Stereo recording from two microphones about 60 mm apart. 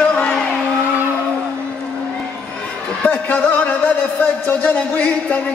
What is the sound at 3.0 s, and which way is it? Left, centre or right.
A man's voice, left.